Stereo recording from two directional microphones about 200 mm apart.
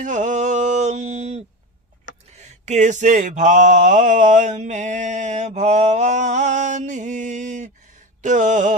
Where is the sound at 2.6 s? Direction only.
35° right (ahead or behind).